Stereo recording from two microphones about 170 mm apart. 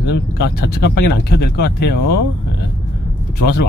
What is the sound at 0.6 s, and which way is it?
Speech, 65° left (ahead or behind).